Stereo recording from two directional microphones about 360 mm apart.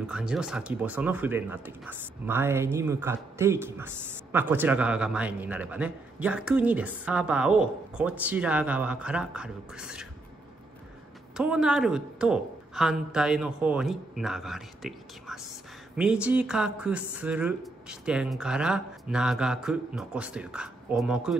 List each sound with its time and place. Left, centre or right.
0.0 s speech: centre
11.3 s speech: centre